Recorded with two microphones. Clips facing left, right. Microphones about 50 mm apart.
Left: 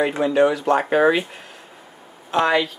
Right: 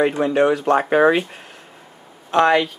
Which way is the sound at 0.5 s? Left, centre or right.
Right.